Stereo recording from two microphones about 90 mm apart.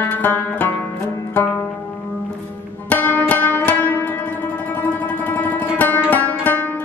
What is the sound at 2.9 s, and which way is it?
Music, 20° left (ahead or behind).